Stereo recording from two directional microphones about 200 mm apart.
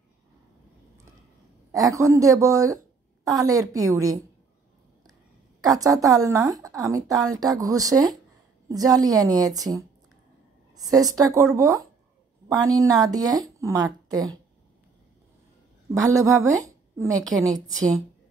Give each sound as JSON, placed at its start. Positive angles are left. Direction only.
{"t": 1.7, "sound": "speech", "side_deg": -15}
{"t": 5.8, "sound": "speech", "side_deg": -15}
{"t": 10.8, "sound": "a woman's voice", "side_deg": -20}
{"t": 15.9, "sound": "a woman's voice", "side_deg": -15}